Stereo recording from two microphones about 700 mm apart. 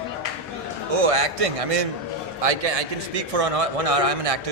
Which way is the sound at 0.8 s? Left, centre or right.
Right.